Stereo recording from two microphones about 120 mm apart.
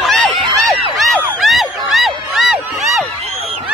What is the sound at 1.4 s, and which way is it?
Crowd, centre (ahead or behind).